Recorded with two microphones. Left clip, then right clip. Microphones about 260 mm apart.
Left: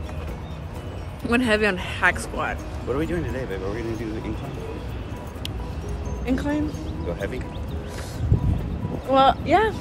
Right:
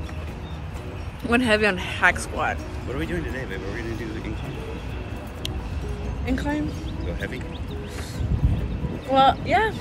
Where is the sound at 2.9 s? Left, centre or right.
Centre.